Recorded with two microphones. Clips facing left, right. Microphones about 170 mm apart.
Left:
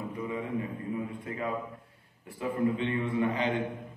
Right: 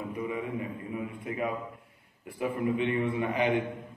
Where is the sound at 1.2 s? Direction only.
20° right (ahead or behind).